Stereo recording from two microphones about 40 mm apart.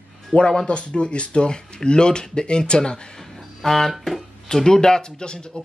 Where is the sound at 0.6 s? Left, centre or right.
Left.